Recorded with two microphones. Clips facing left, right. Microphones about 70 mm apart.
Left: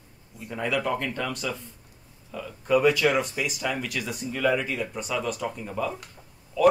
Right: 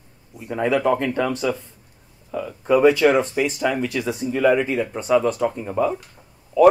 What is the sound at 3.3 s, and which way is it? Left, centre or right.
Speech, right.